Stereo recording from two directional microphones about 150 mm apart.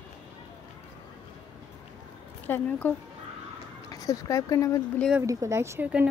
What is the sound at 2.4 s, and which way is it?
Speech, 15° left (ahead or behind).